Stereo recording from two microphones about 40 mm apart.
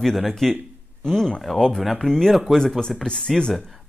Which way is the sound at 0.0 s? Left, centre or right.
Centre.